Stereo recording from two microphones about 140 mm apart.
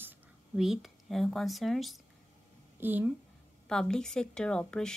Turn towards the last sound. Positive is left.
turn(degrees=5)  # may be behind; listen again after turning